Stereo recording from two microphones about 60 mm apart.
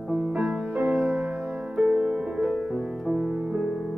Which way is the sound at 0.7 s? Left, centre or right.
Right.